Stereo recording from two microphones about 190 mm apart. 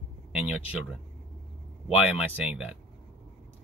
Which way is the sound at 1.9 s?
5° right (ahead or behind).